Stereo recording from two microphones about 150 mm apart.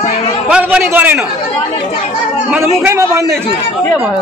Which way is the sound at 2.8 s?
20° right (ahead or behind).